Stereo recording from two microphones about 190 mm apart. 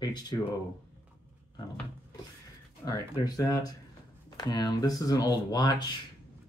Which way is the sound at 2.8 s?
20° left (ahead or behind).